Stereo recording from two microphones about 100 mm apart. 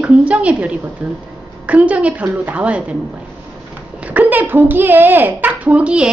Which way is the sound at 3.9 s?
15° right (ahead or behind).